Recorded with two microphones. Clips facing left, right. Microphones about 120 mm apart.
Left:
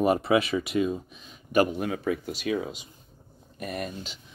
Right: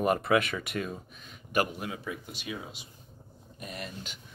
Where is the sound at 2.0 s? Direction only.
70° left (ahead or behind).